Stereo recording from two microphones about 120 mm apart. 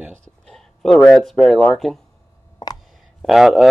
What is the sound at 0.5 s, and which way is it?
Speech, 5° left (ahead or behind).